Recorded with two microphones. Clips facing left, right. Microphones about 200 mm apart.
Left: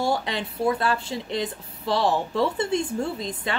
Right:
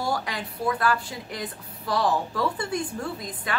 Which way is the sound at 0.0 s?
25° left (ahead or behind).